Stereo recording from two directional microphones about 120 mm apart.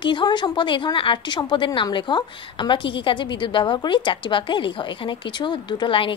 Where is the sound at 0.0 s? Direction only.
40° left (ahead or behind).